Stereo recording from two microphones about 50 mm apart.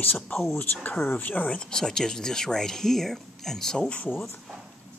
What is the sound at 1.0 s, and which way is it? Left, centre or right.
Speech, left.